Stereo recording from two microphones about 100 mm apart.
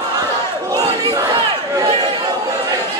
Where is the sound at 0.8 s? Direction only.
35° right (ahead or behind).